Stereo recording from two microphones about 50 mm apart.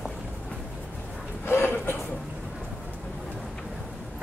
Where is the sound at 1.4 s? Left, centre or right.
Left.